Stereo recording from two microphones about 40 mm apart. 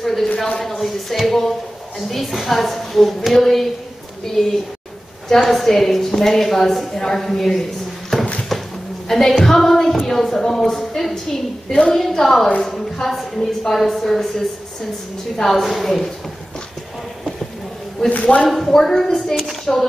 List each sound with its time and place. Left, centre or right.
0.0 s a man's voice: centre
8.1 s a sound: centre
9.1 s a woman's voice: centre
18.2 s speech: left
18.5 s speech: centre
19.7 s speech: left